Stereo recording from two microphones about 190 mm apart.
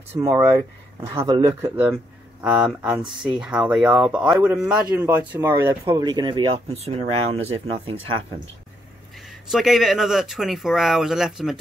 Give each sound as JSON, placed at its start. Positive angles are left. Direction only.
{"t": 0.2, "sound": "speech", "side_deg": -15}
{"t": 3.0, "sound": "speech", "side_deg": -25}
{"t": 3.3, "sound": "speech", "side_deg": -5}
{"t": 9.3, "sound": "speech", "side_deg": 0}